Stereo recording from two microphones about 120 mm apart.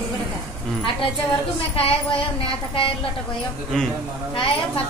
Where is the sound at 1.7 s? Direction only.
55° left (ahead or behind).